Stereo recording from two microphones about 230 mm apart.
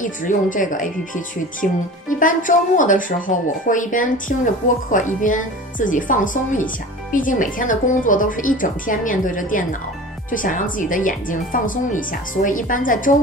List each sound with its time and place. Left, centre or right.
0.0 s speech: left